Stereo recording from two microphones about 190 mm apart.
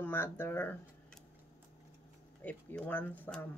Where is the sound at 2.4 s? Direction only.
10° left (ahead or behind).